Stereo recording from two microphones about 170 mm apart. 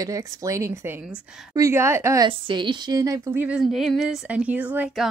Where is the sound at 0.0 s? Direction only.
20° right (ahead or behind).